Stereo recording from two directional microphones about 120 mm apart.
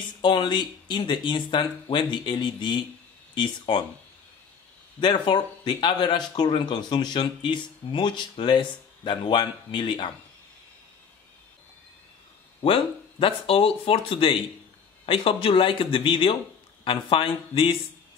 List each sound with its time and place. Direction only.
0.2 s speech: 40° left (ahead or behind)
5.0 s speech: 40° left (ahead or behind)
12.6 s speech: 50° left (ahead or behind)